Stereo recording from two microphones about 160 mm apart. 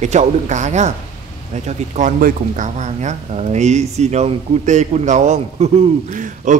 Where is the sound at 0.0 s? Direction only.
45° right (ahead or behind).